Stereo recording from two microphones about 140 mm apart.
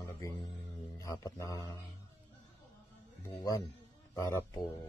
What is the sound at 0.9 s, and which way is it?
Speech, 25° left (ahead or behind).